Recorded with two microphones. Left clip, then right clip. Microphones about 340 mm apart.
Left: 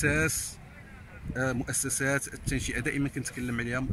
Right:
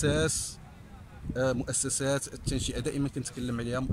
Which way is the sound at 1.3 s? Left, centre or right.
Centre.